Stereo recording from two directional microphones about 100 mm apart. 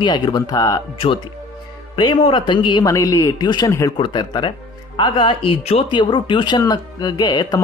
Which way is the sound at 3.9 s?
50° left (ahead or behind).